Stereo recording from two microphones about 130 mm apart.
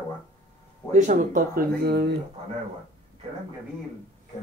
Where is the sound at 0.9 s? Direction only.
75° right (ahead or behind); by 1.6 s 90° right.